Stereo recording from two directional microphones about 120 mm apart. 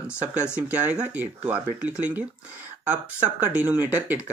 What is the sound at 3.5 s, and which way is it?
Speech, 15° right (ahead or behind).